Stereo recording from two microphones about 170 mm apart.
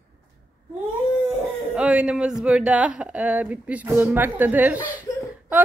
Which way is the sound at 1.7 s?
5° right (ahead or behind).